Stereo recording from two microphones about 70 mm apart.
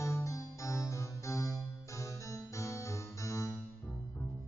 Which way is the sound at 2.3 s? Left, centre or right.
Left.